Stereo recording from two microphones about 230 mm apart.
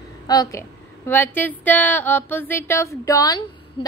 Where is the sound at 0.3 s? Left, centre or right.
Centre.